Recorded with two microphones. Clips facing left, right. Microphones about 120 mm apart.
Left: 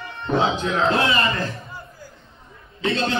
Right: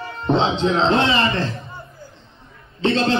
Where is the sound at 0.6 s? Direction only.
25° right (ahead or behind).